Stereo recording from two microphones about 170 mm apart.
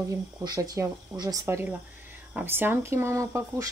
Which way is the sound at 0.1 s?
20° right (ahead or behind).